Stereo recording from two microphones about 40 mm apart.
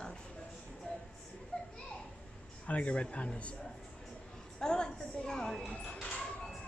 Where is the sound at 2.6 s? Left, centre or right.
Left.